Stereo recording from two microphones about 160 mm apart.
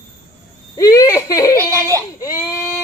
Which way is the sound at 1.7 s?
20° right (ahead or behind).